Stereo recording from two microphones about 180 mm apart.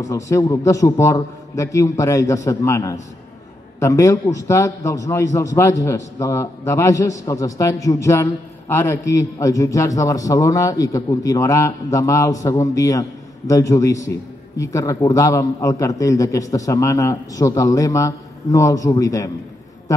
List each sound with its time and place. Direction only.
0.0 s a man's voice: 20° left (ahead or behind)